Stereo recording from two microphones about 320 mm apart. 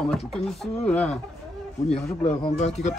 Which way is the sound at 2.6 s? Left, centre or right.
Left.